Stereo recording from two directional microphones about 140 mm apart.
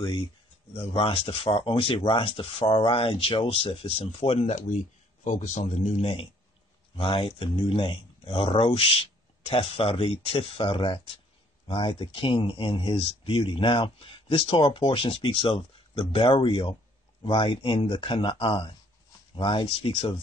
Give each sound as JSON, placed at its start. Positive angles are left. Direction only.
{"t": 0.9, "sound": "a man's voice", "side_deg": 40}